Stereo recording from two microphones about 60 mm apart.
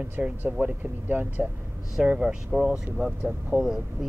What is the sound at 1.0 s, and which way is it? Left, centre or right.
Speech, right.